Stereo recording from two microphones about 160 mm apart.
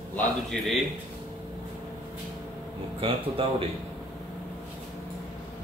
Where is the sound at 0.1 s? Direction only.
Centre (ahead or behind).